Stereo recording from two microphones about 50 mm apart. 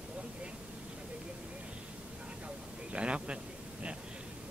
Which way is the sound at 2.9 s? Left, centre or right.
Right.